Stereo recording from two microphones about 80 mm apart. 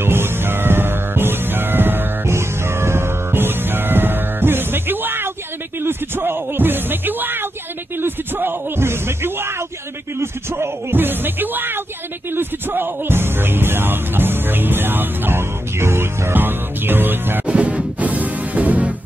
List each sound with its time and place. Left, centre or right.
0.0 s music: right
10.1 s speech: right
17.6 s music: centre